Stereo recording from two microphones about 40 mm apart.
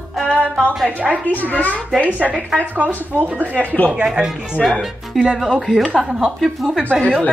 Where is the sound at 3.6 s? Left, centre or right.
Left.